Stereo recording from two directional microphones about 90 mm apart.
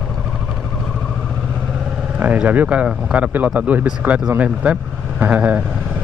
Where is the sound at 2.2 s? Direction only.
15° right (ahead or behind).